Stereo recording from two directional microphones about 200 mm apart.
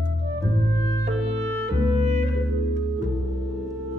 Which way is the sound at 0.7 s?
15° left (ahead or behind).